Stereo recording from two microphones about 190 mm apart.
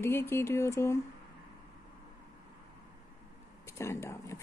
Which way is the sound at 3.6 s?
15° left (ahead or behind).